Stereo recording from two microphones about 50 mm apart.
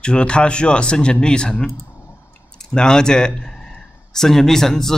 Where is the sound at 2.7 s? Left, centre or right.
Centre.